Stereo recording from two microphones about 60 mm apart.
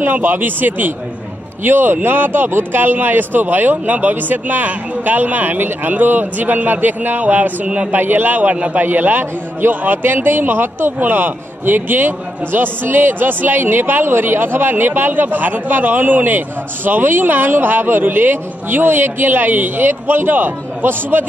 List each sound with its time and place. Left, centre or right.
0.0 s a man's voice: right
8.0 s a man's voice: right